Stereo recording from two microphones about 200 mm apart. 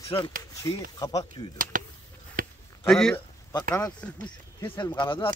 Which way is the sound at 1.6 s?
45° right (ahead or behind).